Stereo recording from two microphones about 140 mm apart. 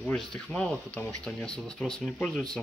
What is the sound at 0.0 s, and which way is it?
Speech, 5° left (ahead or behind).